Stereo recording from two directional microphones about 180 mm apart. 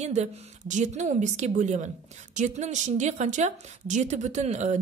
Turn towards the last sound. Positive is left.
turn(degrees=-40)  # may be behind; listen again after turning